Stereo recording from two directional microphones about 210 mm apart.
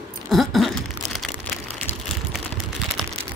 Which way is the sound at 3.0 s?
Centre (ahead or behind).